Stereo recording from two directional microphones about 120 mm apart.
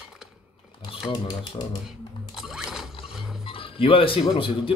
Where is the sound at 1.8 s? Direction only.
5° right (ahead or behind).